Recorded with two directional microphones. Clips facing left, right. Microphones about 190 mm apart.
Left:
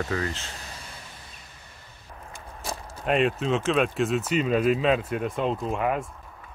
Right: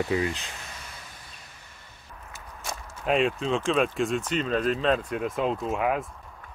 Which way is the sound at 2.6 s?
35° left (ahead or behind).